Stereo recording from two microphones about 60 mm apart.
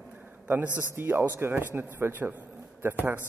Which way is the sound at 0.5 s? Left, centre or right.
Right.